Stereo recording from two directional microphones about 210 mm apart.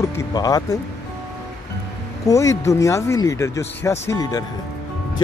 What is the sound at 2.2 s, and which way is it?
Speech, 15° left (ahead or behind).